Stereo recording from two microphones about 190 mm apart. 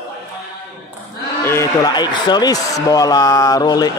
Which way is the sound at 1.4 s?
15° left (ahead or behind).